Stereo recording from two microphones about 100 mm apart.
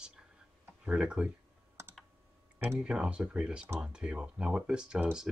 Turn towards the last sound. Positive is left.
turn(degrees=-10)  # may be behind; listen again after turning